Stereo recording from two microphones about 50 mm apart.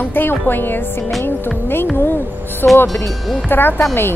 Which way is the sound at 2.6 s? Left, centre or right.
Left.